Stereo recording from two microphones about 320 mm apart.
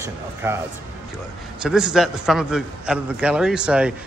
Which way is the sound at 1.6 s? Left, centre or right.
Centre.